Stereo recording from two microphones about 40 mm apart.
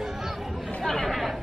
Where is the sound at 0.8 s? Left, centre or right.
Centre.